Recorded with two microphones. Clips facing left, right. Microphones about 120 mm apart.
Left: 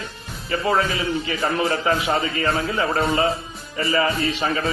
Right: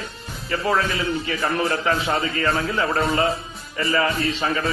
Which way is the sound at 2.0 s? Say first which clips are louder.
Left 1 dB; centre (ahead or behind).